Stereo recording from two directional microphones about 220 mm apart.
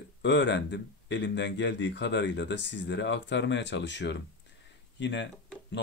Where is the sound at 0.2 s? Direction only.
55° left (ahead or behind).